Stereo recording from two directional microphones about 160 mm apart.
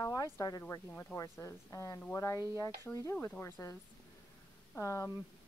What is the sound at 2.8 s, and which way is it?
Speech, 15° left (ahead or behind).